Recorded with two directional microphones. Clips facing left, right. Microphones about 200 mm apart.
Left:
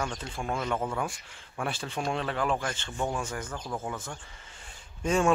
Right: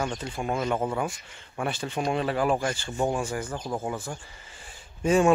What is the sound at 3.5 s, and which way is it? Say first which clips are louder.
Speech: right 4 dB; 30° right (ahead or behind).